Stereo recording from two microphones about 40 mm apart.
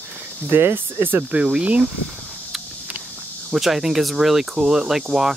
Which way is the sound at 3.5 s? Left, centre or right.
Centre.